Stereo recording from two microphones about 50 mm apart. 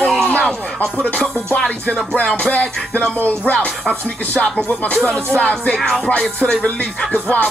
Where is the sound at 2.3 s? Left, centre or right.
Left.